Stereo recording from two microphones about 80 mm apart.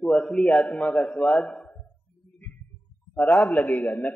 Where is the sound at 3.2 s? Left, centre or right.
Left.